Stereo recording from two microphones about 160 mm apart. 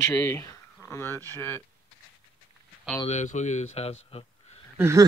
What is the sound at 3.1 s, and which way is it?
Speech, 45° left (ahead or behind).